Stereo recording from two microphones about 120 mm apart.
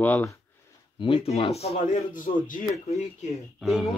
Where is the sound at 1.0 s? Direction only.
50° left (ahead or behind); by 2.2 s 75° left (ahead or behind).